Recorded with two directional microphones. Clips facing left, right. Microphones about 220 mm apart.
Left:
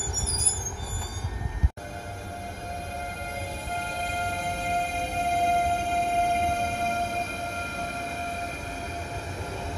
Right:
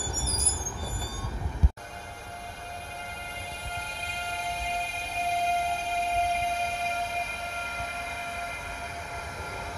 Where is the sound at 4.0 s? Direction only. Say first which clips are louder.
Left 4 dB; 45° left (ahead or behind).